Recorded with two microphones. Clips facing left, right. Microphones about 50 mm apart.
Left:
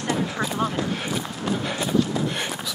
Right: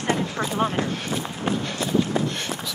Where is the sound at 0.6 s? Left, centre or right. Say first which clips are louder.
Right 3 dB; right.